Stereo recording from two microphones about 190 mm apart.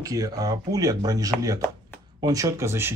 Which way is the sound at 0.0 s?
20° right (ahead or behind).